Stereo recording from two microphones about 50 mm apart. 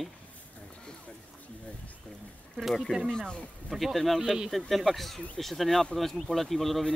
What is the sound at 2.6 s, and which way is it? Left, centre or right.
Speech, centre.